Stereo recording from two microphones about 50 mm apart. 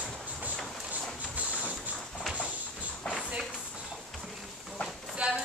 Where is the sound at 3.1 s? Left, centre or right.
Centre.